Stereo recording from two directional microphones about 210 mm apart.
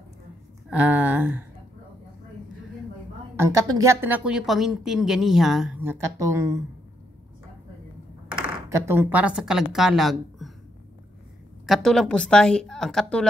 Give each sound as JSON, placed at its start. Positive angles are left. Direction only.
{"t": 0.7, "sound": "speech", "side_deg": -10}
{"t": 3.3, "sound": "speech", "side_deg": -15}
{"t": 8.4, "sound": "speech", "side_deg": -15}
{"t": 11.6, "sound": "a woman's voice", "side_deg": 0}